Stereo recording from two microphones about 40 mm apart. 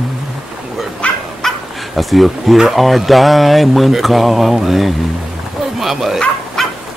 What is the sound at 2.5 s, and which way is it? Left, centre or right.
Speech, centre.